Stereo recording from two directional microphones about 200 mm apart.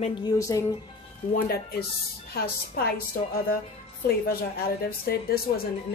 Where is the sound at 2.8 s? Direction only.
50° left (ahead or behind).